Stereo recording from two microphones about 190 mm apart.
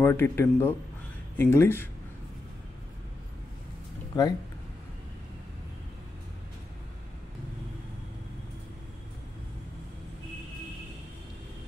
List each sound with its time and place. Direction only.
0.0 s a man's voice: 10° left (ahead or behind)
4.1 s speech: 20° left (ahead or behind)